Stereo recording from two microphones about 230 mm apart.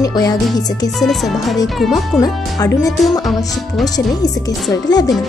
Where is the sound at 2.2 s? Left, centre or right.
Centre.